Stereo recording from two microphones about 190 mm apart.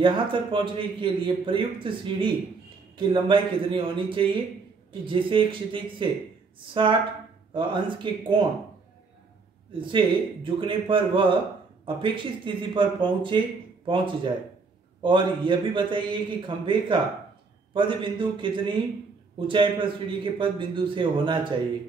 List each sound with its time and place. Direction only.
0.0 s speech: 25° right (ahead or behind)
9.7 s speech: 25° right (ahead or behind)